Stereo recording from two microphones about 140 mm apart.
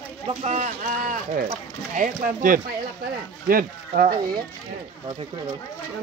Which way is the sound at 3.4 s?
90° right.